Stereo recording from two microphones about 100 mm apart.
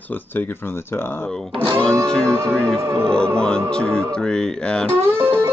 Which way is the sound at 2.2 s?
30° right (ahead or behind).